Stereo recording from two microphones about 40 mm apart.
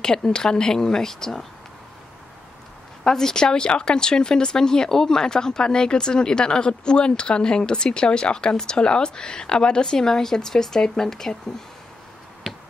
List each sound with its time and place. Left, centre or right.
0.0 s a woman's voice: centre
3.0 s speech: centre
12.4 s tick-tock: centre